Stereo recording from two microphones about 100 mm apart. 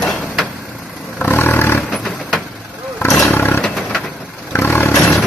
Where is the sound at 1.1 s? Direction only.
20° left (ahead or behind).